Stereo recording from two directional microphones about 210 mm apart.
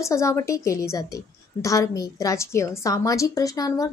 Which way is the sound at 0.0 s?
15° left (ahead or behind).